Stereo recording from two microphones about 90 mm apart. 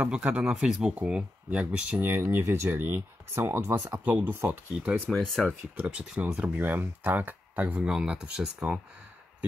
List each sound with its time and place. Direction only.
0.0 s speech: 15° right (ahead or behind)
5.1 s speech: centre (ahead or behind)
5.5 s speech: 20° right (ahead or behind)